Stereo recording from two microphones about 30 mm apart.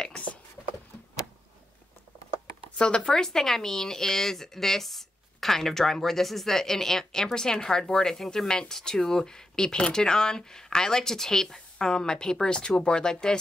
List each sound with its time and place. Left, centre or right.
2.8 s speech: left
3.3 s a woman's voice: centre